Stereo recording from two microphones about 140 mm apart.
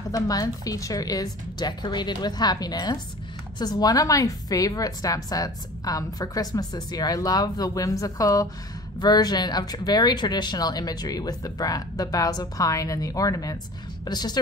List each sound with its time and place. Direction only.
0.1 s a woman's voice: 25° left (ahead or behind)